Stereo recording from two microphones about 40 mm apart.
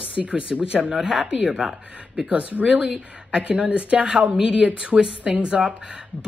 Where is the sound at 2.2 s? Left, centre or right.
Right.